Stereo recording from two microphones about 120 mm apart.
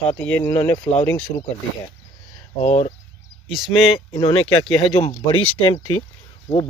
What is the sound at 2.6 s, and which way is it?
Speech, 65° left (ahead or behind).